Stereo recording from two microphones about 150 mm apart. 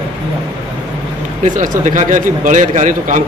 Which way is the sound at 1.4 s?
60° right (ahead or behind).